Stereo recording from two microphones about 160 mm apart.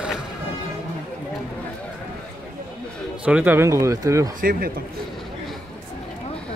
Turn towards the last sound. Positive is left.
turn(degrees=-65)  # may be behind; listen again after turning